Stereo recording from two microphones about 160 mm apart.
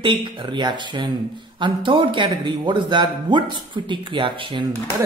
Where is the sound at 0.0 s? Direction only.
30° right (ahead or behind).